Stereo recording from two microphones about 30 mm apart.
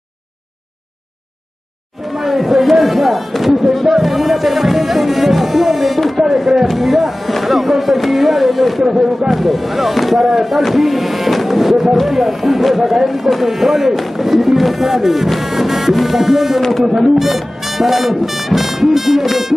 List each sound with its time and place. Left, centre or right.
2.0 s speech: centre
3.7 s music: centre
5.9 s a sound: centre
6.7 s speech: centre